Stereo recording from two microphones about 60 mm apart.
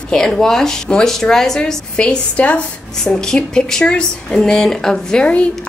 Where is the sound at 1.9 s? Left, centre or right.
Centre.